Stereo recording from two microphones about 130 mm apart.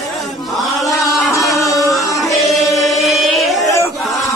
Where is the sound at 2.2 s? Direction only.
Centre (ahead or behind).